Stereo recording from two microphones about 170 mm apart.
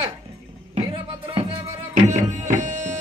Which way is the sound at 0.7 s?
30° right (ahead or behind).